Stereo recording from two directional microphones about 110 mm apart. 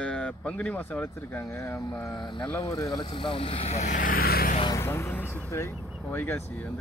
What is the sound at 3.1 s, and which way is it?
Speech, 50° left (ahead or behind).